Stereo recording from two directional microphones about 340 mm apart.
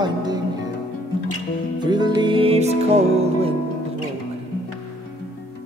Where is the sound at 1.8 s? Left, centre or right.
Centre.